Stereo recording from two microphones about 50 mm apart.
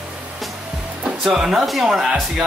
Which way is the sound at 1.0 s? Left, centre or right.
Centre.